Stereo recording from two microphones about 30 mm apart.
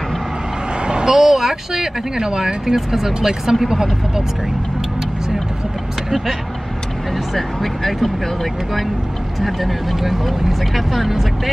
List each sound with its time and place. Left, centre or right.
0.7 s vehicle: right
1.0 s speech: centre
3.6 s speech: centre
6.0 s speech: centre
7.3 s speech: centre
9.4 s speech: centre